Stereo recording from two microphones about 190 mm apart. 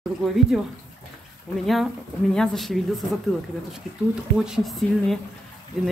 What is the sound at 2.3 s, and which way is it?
Speech, centre (ahead or behind).